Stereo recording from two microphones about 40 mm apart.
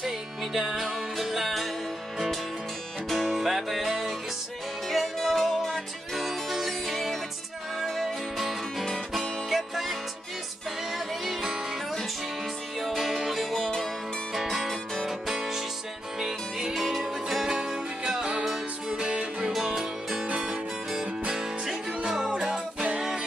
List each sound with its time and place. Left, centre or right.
0.0 s music: centre
3.1 s music: centre
12.8 s music: centre
14.3 s music: centre
20.2 s music: right
21.3 s music: centre